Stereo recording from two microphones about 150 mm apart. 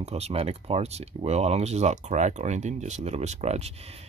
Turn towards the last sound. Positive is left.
turn(degrees=-45)  # may be behind; listen again after turning